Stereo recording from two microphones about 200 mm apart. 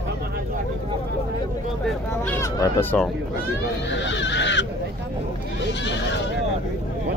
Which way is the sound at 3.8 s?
60° left (ahead or behind).